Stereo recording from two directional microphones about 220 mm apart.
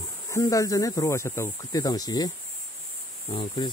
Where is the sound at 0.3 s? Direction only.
15° left (ahead or behind).